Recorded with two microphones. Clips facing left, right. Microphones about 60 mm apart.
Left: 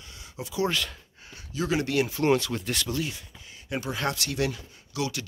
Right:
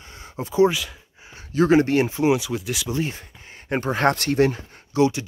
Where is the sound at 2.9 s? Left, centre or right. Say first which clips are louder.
Right 5 dB; right.